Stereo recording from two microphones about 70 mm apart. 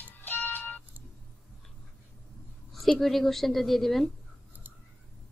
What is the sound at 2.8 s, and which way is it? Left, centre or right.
A woman's voice, centre.